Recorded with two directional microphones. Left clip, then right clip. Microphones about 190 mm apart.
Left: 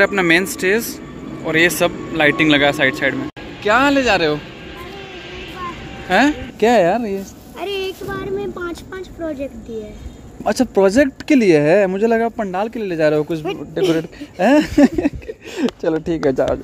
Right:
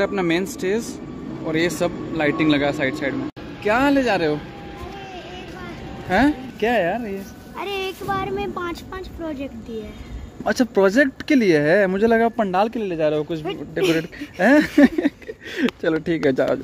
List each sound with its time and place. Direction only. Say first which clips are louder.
0.0 s a man's voice: left 7 dB; centre (ahead or behind)
6.0 s speech: left 4 dB; 5° right (ahead or behind)
6.6 s speech: left 7 dB; 25° left (ahead or behind)
7.5 s a sound: left 3 dB; 5° left (ahead or behind)
8.1 s a man's voice: even; 10° right (ahead or behind)
13.0 s speech: left 6 dB; 20° left (ahead or behind)
13.7 s speech: left 3 dB; 5° right (ahead or behind)
14.4 s speech: left 2 dB; 10° left (ahead or behind)